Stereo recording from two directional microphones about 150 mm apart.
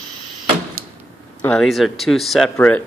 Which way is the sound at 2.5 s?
10° left (ahead or behind).